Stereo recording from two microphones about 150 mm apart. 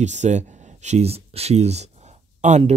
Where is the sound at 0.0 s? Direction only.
50° right (ahead or behind).